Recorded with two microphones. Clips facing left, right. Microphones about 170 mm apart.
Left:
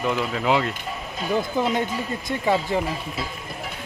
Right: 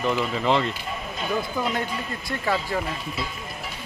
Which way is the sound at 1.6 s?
25° left (ahead or behind).